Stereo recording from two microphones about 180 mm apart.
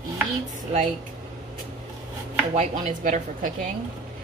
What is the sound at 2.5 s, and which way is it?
Speech, 40° right (ahead or behind).